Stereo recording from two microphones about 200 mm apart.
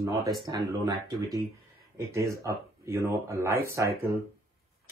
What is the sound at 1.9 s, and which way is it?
Speech, 15° right (ahead or behind).